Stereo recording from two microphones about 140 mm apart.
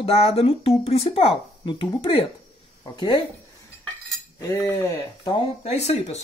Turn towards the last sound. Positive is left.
turn(degrees=50)  # may be behind; listen again after turning